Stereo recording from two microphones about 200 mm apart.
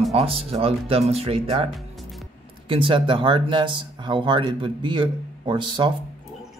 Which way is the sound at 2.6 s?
25° right (ahead or behind).